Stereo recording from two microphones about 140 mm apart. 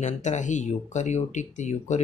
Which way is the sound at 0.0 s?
60° left (ahead or behind).